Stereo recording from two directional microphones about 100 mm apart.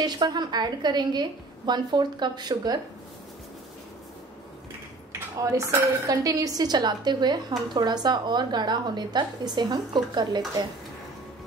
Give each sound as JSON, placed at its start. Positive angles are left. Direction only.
{"t": 0.0, "sound": "speech", "side_deg": -45}
{"t": 5.4, "sound": "speech", "side_deg": -30}